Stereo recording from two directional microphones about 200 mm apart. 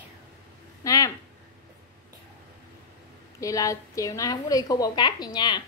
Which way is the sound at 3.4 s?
15° left (ahead or behind).